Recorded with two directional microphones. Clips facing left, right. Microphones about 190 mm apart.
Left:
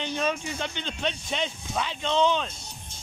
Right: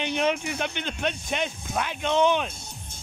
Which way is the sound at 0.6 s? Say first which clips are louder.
Right 2 dB; 10° right (ahead or behind).